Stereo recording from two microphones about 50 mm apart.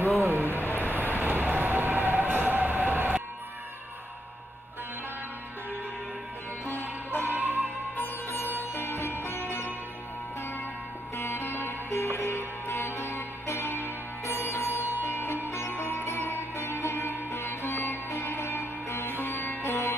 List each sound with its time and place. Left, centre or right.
0.2 s a sound: right
0.7 s vehicle: left
1.1 s train: right
6.6 s music: left
7.3 s music: right
8.0 s sitar: left
11.1 s music: left
19.2 s music: left